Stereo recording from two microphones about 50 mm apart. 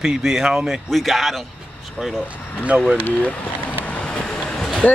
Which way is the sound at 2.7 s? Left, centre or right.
Right.